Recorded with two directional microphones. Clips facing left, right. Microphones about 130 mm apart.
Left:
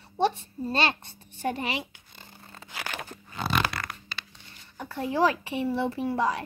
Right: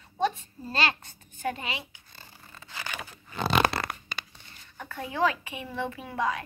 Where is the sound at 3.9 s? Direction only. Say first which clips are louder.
Right 3 dB; 45° right (ahead or behind).